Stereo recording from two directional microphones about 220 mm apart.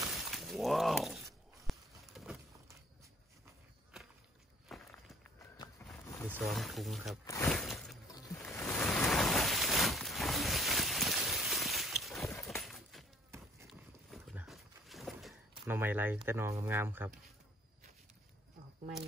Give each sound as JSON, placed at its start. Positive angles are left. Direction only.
{"t": 0.1, "sound": "shatter", "side_deg": 0}
{"t": 1.7, "sound": "a sound", "side_deg": 0}
{"t": 4.6, "sound": "walk", "side_deg": 0}
{"t": 6.0, "sound": "a sound", "side_deg": 10}
{"t": 6.3, "sound": "speech", "side_deg": 0}
{"t": 7.4, "sound": "a sound", "side_deg": 0}
{"t": 8.1, "sound": "music", "side_deg": 15}
{"t": 8.5, "sound": "rain", "side_deg": 10}
{"t": 13.7, "sound": "horse", "side_deg": 0}
{"t": 15.6, "sound": "speech", "side_deg": -10}